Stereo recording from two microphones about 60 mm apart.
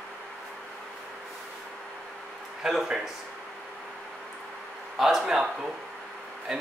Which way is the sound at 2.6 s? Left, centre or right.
Centre.